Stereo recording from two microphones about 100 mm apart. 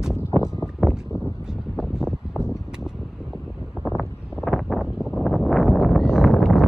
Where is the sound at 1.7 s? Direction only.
5° right (ahead or behind).